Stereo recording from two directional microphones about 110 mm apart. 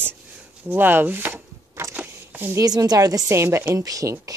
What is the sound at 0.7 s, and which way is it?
Chopping, 15° right (ahead or behind).